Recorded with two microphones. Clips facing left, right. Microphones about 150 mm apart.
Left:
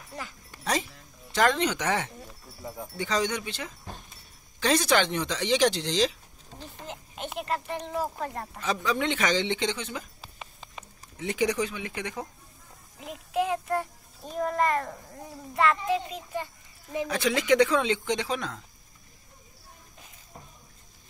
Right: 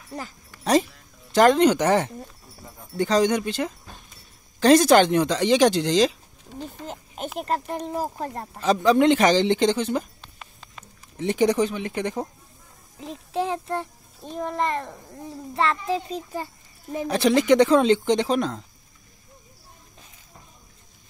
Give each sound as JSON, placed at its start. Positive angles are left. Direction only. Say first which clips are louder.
{"t": 1.3, "sound": "speech", "louder": "right 8 dB", "side_deg": -40}
{"t": 10.2, "sound": "a sound", "louder": "left 1 dB", "side_deg": 5}
{"t": 11.1, "sound": "speech", "louder": "right 7 dB", "side_deg": -35}
{"t": 13.0, "sound": "child singing", "louder": "right 1 dB", "side_deg": -30}
{"t": 14.2, "sound": "a child's voice", "louder": "even", "side_deg": 0}
{"t": 15.5, "sound": "speech", "louder": "right 1 dB", "side_deg": -30}